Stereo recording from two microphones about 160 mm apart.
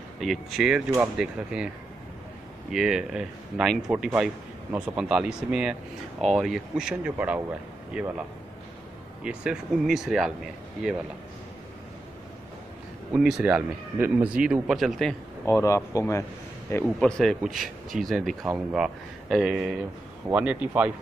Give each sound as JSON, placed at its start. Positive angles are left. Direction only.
{"t": 0.2, "sound": "speech", "side_deg": 0}
{"t": 2.7, "sound": "speech", "side_deg": -5}
{"t": 13.1, "sound": "speech", "side_deg": -5}
{"t": 15.4, "sound": "speech", "side_deg": 15}
{"t": 16.7, "sound": "a man's voice", "side_deg": 5}